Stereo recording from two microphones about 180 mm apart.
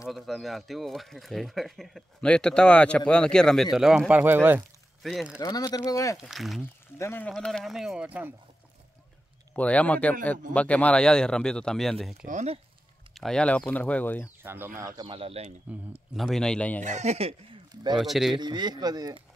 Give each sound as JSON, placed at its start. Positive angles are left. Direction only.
{"t": 0.0, "sound": "a man's voice", "side_deg": 0}
{"t": 5.4, "sound": "speech", "side_deg": 20}
{"t": 6.1, "sound": "speech", "side_deg": 0}
{"t": 7.0, "sound": "speech", "side_deg": 15}
{"t": 7.2, "sound": "speech", "side_deg": 5}
{"t": 9.6, "sound": "speech", "side_deg": 5}
{"t": 12.3, "sound": "speech", "side_deg": -40}
{"t": 13.1, "sound": "speech", "side_deg": 0}
{"t": 14.4, "sound": "speech", "side_deg": -10}
{"t": 16.2, "sound": "speech", "side_deg": 0}
{"t": 16.8, "sound": "speech", "side_deg": -40}
{"t": 17.9, "sound": "speech", "side_deg": 0}
{"t": 18.4, "sound": "speech", "side_deg": -25}